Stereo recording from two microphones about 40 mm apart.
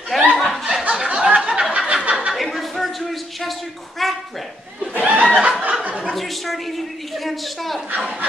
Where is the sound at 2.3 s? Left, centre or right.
Centre.